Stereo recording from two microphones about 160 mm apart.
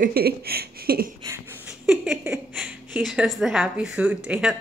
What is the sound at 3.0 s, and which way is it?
A woman's voice, centre (ahead or behind).